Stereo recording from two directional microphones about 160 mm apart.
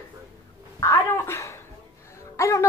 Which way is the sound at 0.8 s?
15° left (ahead or behind).